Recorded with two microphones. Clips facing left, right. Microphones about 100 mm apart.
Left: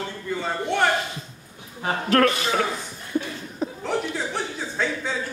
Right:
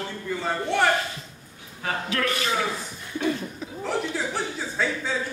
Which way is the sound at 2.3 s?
25° left (ahead or behind).